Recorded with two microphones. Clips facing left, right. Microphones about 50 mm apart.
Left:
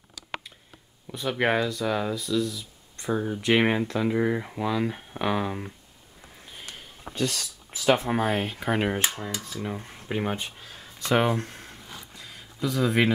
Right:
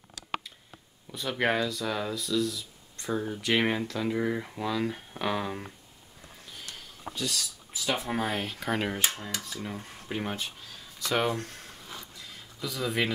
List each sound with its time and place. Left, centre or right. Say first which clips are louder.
1.1 s speech: left 3 dB; centre
6.4 s sniff: left 2 dB; left
7.2 s speech: left 5 dB; left
8.1 s speech: left 5 dB; centre
9.1 s rub: left 3 dB; left
9.5 s speech: left 4 dB; centre
12.1 s a sound: left 2 dB; left